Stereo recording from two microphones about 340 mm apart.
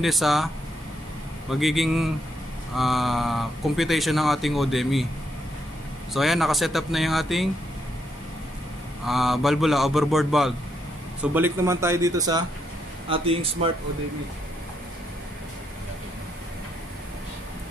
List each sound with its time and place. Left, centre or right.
0.0 s speech: centre
1.5 s speech: centre
6.1 s speech: centre
9.0 s speech: centre